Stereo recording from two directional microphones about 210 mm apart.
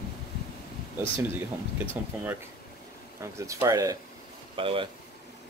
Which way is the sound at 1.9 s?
10° right (ahead or behind).